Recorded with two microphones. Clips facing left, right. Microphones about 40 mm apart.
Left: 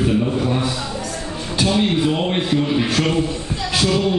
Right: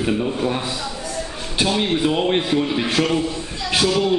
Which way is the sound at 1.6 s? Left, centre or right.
Right.